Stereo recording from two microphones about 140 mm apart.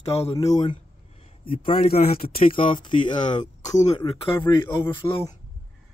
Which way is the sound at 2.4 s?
35° left (ahead or behind).